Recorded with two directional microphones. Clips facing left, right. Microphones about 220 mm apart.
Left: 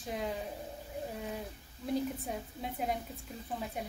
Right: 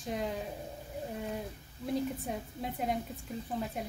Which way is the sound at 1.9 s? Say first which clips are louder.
Right 1 dB; centre (ahead or behind).